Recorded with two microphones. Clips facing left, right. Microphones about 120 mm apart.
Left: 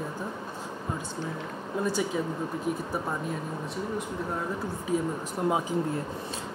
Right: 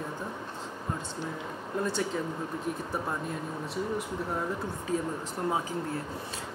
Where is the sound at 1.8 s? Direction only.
10° left (ahead or behind).